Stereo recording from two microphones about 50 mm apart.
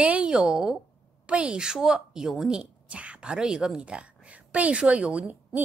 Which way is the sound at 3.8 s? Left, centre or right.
Right.